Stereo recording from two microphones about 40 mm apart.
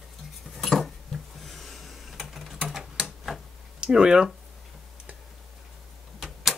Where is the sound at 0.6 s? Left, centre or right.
Centre.